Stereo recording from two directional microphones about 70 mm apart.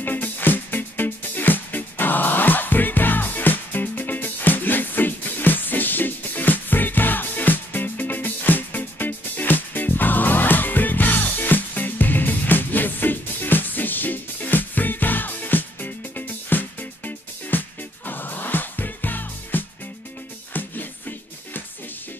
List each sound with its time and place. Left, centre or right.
0.0 s music: left